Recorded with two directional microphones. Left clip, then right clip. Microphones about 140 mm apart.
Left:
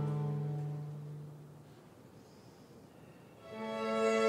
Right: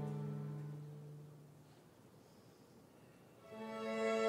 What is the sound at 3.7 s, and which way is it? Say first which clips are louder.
Music: left 7 dB; 15° left (ahead or behind).